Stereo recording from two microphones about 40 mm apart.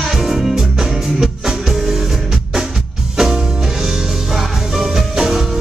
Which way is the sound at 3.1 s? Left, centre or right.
Centre.